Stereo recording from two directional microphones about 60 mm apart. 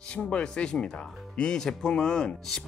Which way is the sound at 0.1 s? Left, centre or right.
Centre.